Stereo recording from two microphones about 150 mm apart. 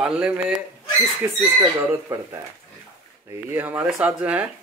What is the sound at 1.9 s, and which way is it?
Speech, 15° right (ahead or behind).